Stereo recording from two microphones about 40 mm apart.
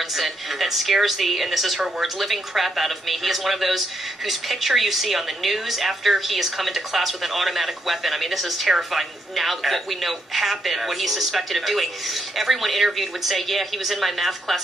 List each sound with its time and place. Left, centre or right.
0.1 s a woman's voice: centre